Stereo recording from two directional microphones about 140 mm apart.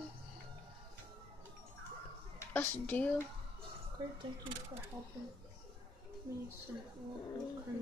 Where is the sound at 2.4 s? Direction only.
15° left (ahead or behind).